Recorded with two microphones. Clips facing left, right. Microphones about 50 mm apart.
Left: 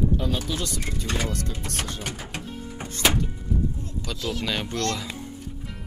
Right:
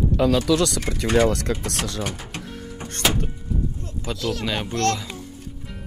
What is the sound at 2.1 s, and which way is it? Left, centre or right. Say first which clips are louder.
Speech: right 1 dB; centre.